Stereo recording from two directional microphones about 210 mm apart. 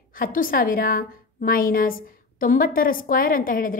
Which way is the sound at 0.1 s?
40° left (ahead or behind).